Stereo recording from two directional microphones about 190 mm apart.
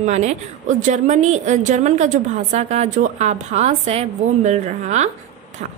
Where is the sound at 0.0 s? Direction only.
35° right (ahead or behind).